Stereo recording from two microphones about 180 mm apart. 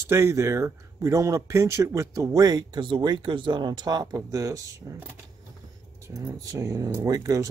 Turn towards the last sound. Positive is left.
turn(degrees=-20)  # may be behind; listen again after turning